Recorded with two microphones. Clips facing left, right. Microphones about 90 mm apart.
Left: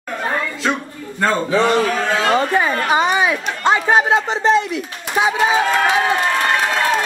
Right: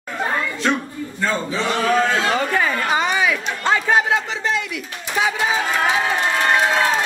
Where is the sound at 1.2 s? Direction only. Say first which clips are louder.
Left 6 dB; 60° left (ahead or behind).